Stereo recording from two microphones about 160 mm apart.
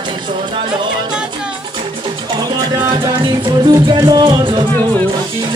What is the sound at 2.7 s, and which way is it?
Music, 20° right (ahead or behind).